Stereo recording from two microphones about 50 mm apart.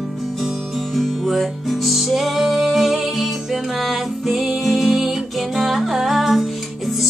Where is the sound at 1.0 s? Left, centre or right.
Centre.